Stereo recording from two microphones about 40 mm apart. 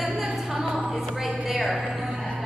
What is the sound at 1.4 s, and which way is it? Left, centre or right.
Music, centre.